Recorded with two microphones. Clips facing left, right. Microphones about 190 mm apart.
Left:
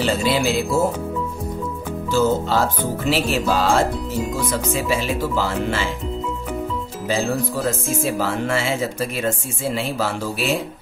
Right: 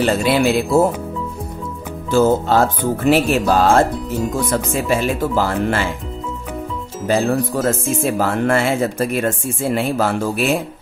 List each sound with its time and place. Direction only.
0.0 s speech: 60° right (ahead or behind)
2.1 s speech: 50° right (ahead or behind)
7.1 s speech: 55° right (ahead or behind)